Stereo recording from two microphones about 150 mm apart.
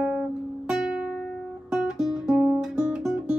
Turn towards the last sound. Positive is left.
turn(degrees=-5)  # may be behind; listen again after turning